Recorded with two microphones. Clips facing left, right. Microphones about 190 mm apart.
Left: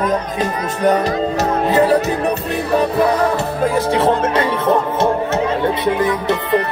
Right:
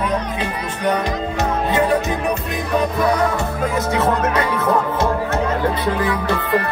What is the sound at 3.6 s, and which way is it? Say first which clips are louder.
Music: left 4 dB; 30° left (ahead or behind).